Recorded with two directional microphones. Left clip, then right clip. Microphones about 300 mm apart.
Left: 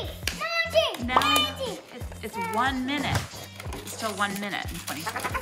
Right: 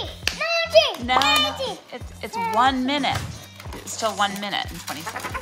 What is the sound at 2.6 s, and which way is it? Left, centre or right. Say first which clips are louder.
Speech: right 7 dB; centre.